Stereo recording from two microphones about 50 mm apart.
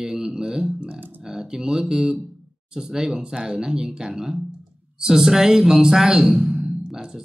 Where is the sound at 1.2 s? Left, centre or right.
Centre.